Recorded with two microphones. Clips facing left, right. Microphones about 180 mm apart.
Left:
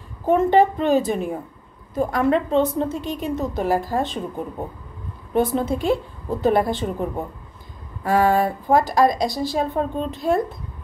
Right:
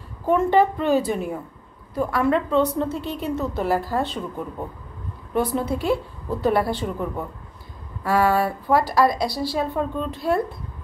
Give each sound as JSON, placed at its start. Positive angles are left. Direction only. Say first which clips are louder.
{"t": 0.3, "sound": "a woman's voice", "louder": "left 2 dB", "side_deg": 20}